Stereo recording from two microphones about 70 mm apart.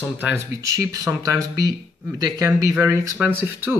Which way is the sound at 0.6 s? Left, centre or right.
Right.